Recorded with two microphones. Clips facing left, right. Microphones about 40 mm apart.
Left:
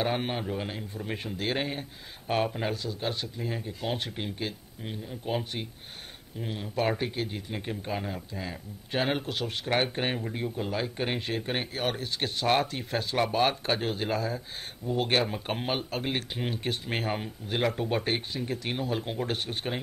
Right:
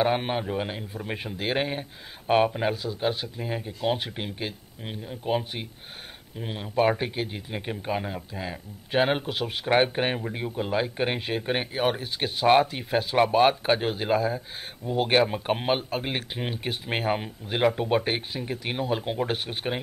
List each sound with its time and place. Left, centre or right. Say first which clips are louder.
0.0 s speech: right 5 dB; centre